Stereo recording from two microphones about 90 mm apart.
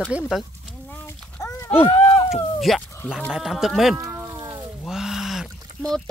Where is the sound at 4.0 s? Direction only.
40° right (ahead or behind).